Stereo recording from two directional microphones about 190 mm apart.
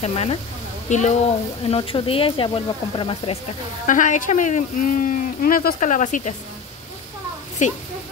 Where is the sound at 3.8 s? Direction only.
40° left (ahead or behind).